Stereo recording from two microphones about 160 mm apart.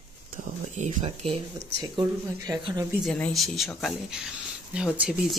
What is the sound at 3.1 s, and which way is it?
Speech, 5° left (ahead or behind).